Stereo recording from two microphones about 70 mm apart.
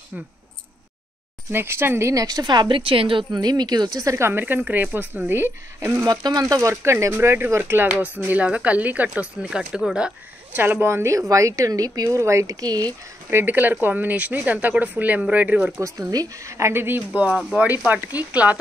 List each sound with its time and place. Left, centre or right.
1.5 s speech: right
2.1 s a woman's voice: right
3.3 s speech: right
4.3 s speech: right
6.0 s speech: right
6.7 s speech: right
8.3 s speech: centre
9.6 s speech: centre
10.5 s a woman's voice: right
12.2 s speech: right
13.3 s speech: right
15.8 s speech: right